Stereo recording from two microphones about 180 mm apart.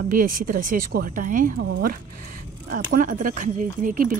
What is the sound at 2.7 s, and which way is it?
Speech, 45° right (ahead or behind).